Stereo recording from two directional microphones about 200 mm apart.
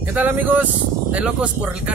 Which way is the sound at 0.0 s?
10° right (ahead or behind).